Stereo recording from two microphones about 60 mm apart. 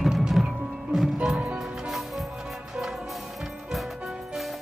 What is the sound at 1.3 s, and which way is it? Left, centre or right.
Music, right.